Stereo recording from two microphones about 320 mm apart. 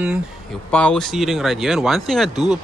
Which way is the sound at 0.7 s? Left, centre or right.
Centre.